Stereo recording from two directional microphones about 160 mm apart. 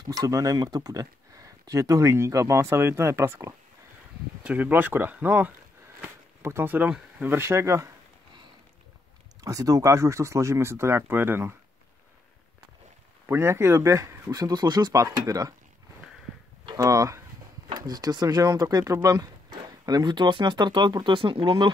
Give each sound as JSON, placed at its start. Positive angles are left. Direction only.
{"t": 0.1, "sound": "speech", "side_deg": -20}
{"t": 9.4, "sound": "speech", "side_deg": -20}
{"t": 13.3, "sound": "speech", "side_deg": -15}
{"t": 16.7, "sound": "speech", "side_deg": -20}